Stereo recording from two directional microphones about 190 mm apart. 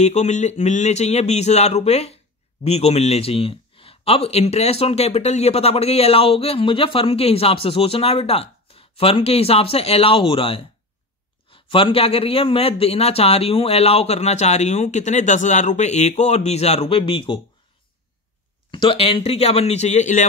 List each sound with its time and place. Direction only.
0.0 s a man's voice: 35° left (ahead or behind)
11.7 s a man's voice: 30° left (ahead or behind)
18.7 s a man's voice: 25° left (ahead or behind)